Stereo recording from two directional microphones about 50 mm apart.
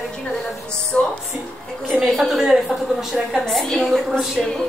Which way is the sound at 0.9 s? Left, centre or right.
Left.